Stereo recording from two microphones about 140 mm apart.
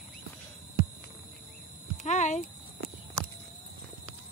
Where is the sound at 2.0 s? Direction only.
60° left (ahead or behind).